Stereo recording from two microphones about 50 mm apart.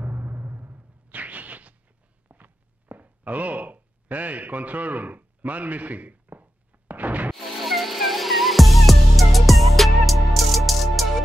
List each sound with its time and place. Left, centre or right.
0.0 s a sound: right
2.2 s walk: right
6.9 s music: right
7.3 s music: centre